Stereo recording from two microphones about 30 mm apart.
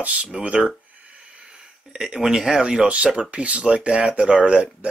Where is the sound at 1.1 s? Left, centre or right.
Right.